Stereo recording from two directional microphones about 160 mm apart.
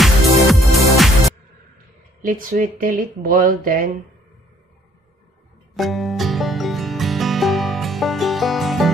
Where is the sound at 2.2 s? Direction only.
55° right (ahead or behind).